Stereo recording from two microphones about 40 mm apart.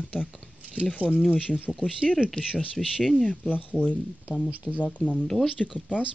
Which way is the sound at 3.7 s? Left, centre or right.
Centre.